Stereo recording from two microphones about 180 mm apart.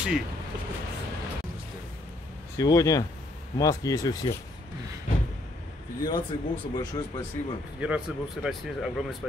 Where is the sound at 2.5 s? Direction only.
20° left (ahead or behind).